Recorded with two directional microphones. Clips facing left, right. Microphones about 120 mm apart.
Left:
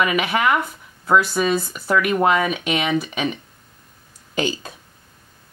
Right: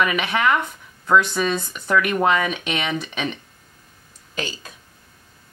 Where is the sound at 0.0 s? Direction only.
5° left (ahead or behind).